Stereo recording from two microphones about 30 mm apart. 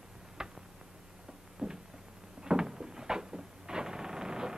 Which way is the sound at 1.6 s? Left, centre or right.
Right.